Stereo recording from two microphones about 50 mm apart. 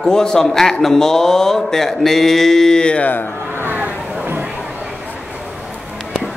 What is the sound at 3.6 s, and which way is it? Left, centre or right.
Vehicle, right.